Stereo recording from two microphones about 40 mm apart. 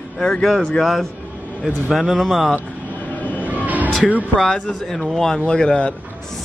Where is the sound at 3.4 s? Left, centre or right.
Right.